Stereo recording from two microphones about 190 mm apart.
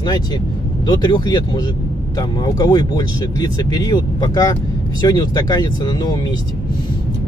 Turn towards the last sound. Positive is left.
turn(degrees=20)  # may be behind; listen again after turning